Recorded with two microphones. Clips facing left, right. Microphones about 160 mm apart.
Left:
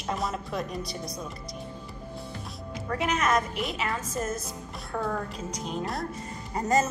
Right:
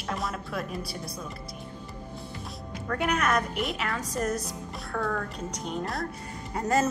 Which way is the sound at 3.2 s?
Centre (ahead or behind).